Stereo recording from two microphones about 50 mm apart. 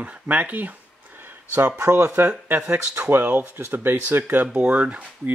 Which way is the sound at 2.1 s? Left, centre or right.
Right.